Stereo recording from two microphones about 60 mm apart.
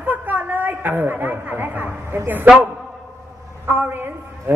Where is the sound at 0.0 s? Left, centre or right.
Right.